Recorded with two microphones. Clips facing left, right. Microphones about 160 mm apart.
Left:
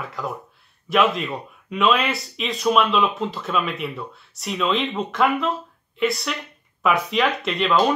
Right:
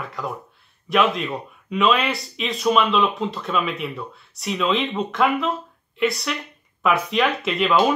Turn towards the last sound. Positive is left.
turn(degrees=-5)  # may be behind; listen again after turning